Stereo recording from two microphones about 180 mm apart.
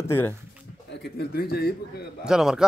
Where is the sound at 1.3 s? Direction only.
60° left (ahead or behind).